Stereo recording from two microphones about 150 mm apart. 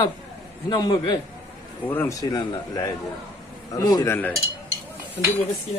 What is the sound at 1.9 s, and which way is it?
Speech, 15° left (ahead or behind).